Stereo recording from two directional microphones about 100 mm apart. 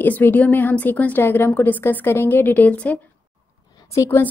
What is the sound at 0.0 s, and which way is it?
A woman's voice, 20° left (ahead or behind).